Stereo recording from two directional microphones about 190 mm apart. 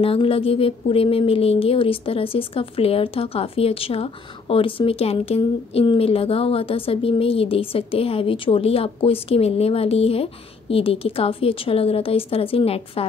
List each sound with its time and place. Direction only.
0.0 s speech: 30° left (ahead or behind)